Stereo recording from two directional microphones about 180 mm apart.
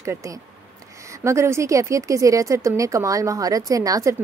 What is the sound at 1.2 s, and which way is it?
A woman's voice, 15° right (ahead or behind).